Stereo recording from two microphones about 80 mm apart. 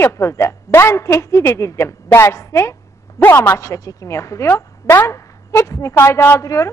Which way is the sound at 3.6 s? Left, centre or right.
Left.